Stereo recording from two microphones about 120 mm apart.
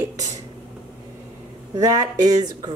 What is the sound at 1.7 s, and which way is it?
Speech, 30° right (ahead or behind).